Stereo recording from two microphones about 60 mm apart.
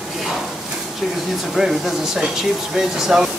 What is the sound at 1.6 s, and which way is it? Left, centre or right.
Speech, centre.